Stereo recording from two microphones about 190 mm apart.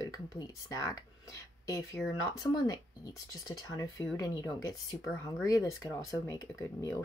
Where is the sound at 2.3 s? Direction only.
20° left (ahead or behind).